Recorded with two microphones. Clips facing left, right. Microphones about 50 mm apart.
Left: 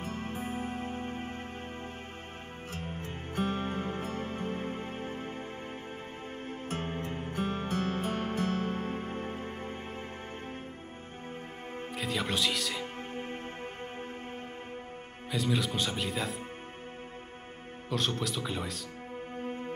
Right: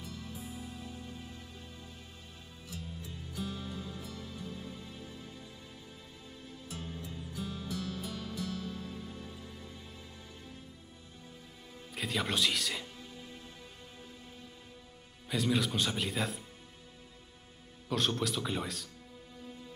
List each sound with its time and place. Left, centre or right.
0.0 s music: left
2.7 s music: left
6.4 s music: left
11.9 s speech: centre
13.1 s music: left
15.3 s speech: centre
17.8 s speech: centre
19.3 s music: left